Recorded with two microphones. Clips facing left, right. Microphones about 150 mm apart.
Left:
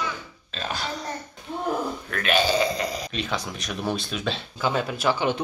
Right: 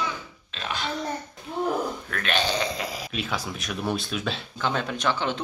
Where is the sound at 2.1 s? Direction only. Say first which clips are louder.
Left 6 dB; 5° left (ahead or behind).